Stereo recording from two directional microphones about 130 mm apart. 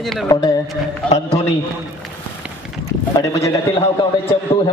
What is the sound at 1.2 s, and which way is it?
Speech, 60° left (ahead or behind).